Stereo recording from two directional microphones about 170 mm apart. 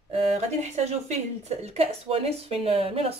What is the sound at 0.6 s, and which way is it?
Speech, 40° right (ahead or behind).